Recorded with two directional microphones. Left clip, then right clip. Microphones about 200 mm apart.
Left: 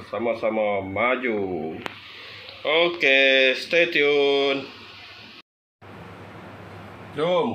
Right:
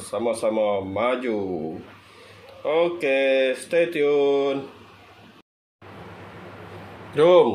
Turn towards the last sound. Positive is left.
turn(degrees=-45)  # may be behind; listen again after turning